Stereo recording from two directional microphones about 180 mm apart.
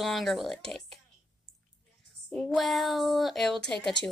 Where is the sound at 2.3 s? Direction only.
Centre (ahead or behind).